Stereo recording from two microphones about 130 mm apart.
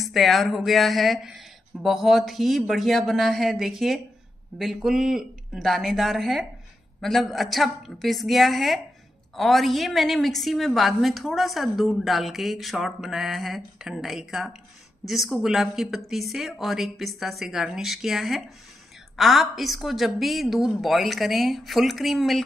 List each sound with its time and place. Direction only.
0.0 s a woman's voice: centre (ahead or behind)